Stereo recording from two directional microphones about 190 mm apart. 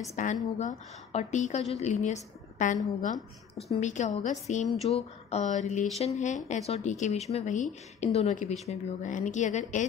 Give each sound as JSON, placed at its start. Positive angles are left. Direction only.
{"t": 0.1, "sound": "speech", "side_deg": 40}